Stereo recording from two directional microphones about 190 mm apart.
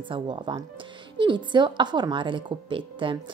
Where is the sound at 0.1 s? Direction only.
25° right (ahead or behind).